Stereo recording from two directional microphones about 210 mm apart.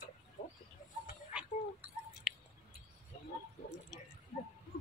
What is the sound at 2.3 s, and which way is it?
Chewing, 5° right (ahead or behind).